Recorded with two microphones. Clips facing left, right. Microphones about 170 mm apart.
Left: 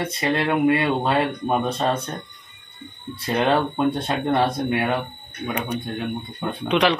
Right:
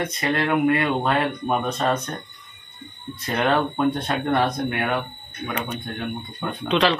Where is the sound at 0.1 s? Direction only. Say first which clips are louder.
Left 2 dB; 25° left (ahead or behind).